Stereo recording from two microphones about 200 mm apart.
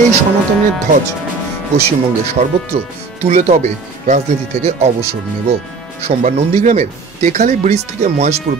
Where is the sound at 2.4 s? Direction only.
35° right (ahead or behind).